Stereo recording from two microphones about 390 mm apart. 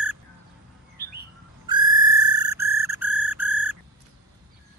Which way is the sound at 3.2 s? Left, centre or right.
Left.